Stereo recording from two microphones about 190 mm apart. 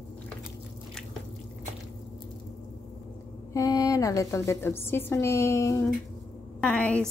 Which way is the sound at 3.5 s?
20° left (ahead or behind).